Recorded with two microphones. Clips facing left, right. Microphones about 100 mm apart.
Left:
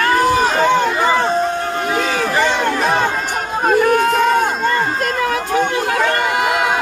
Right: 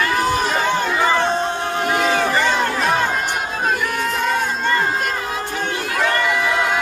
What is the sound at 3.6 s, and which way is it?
Crowd, 50° left (ahead or behind).